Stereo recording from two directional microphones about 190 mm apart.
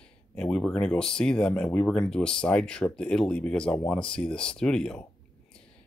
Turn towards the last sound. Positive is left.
turn(degrees=5)  # may be behind; listen again after turning